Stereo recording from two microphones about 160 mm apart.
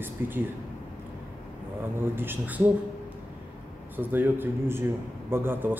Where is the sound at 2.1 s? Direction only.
15° right (ahead or behind).